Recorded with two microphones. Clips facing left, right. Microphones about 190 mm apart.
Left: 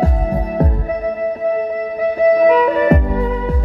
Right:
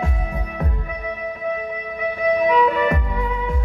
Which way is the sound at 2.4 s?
40° left (ahead or behind).